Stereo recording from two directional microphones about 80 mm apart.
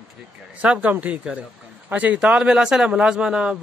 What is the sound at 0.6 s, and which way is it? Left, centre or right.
A man's voice, centre.